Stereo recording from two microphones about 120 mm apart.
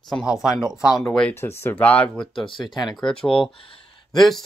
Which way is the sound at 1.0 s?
5° left (ahead or behind).